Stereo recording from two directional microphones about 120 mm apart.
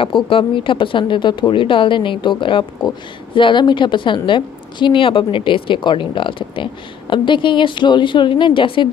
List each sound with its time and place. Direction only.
0.0 s a woman's voice: 45° left (ahead or behind)